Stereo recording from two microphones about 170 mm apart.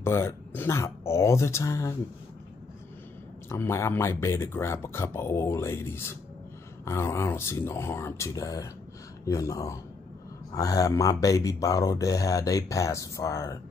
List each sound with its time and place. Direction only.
0.0 s speech: 15° left (ahead or behind)
3.4 s speech: 15° left (ahead or behind)